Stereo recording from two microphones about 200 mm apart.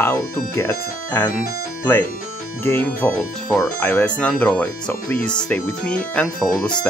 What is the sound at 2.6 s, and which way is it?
Speech, 10° left (ahead or behind).